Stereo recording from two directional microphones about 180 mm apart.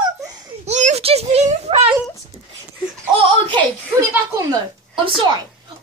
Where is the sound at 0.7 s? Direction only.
40° right (ahead or behind).